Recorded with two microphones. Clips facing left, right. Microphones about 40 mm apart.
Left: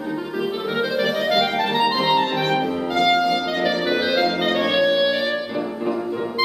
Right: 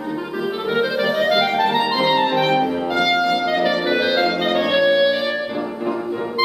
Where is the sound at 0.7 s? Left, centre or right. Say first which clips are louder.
Right 3 dB; centre.